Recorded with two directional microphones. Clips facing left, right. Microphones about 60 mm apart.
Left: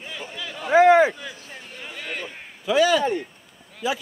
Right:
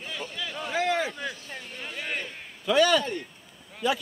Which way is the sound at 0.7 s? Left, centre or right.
Left.